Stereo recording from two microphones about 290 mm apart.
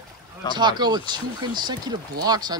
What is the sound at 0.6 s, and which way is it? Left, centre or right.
Speech, centre.